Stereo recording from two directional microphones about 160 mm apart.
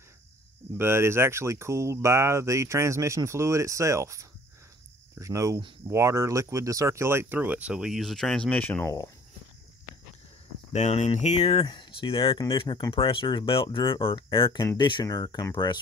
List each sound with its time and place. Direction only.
0.7 s speech: 15° right (ahead or behind); by 8.9 s 10° left (ahead or behind)
10.7 s speech: 45° left (ahead or behind); by 15.8 s 25° left (ahead or behind)